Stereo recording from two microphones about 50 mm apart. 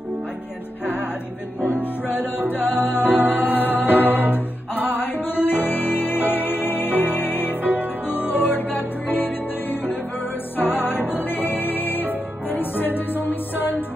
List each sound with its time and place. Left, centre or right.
1.7 s music: left
3.3 s music: right
4.8 s music: left
7.6 s music: right
8.3 s music: left